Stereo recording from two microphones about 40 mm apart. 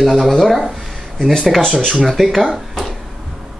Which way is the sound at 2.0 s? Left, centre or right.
Centre.